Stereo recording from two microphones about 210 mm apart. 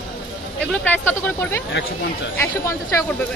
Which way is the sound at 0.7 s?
10° left (ahead or behind).